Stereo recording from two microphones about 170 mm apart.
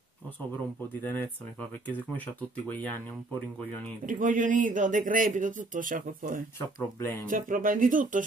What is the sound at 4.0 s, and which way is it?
Speech, 50° right (ahead or behind).